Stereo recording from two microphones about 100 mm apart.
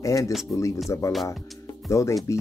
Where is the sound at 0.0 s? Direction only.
35° left (ahead or behind).